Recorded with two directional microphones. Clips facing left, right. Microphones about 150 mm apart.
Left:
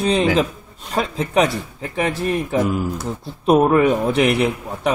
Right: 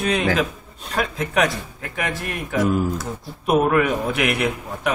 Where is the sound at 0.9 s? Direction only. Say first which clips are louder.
Left 3 dB; 30° left (ahead or behind).